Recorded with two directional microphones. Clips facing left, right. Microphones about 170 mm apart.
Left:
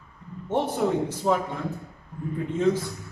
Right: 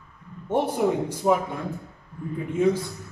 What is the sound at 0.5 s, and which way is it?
Speech, 10° right (ahead or behind).